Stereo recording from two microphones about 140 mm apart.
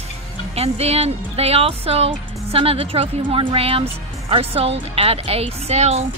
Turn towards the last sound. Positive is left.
turn(degrees=-50)  # may be behind; listen again after turning